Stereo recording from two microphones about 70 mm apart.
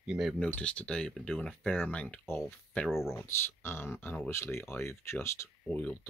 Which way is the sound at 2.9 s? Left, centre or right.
Centre.